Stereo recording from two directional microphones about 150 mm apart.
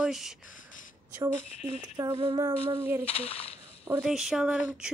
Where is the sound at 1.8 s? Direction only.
25° right (ahead or behind).